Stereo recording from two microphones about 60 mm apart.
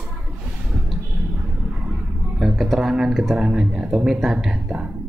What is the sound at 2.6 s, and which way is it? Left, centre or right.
Speech, centre.